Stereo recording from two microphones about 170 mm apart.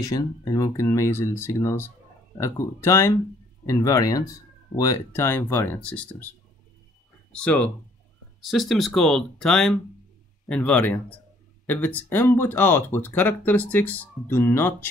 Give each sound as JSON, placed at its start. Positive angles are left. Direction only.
{"t": 0.0, "sound": "speech", "side_deg": 20}
{"t": 7.3, "sound": "speech", "side_deg": 5}